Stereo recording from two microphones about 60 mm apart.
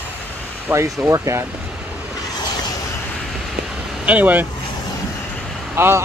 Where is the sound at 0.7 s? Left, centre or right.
Right.